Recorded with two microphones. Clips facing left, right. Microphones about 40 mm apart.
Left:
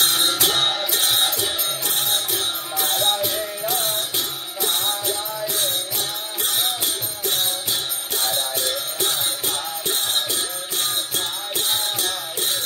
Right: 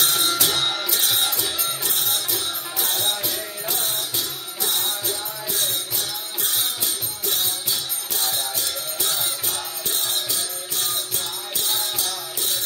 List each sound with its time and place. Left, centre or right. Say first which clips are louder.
0.0 s music: left 2 dB; left
7.2 s jingle bell: left 2 dB; left